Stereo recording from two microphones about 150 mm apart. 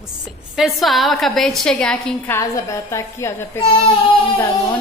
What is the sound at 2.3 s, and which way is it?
A woman's voice, 20° left (ahead or behind).